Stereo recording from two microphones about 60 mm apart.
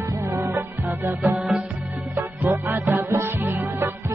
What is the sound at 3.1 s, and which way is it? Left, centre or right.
Music, right.